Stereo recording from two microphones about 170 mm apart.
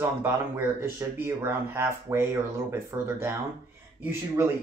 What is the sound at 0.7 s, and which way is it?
Speech, 15° right (ahead or behind).